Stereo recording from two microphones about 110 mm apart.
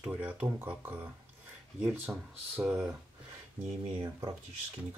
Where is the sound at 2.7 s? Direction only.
20° right (ahead or behind).